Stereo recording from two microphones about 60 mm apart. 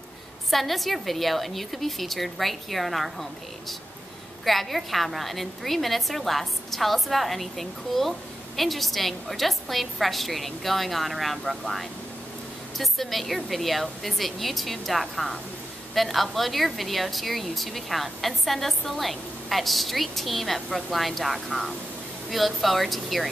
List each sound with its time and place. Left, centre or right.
0.5 s a woman's voice: centre